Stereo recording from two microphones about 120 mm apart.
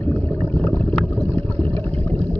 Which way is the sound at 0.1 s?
15° left (ahead or behind).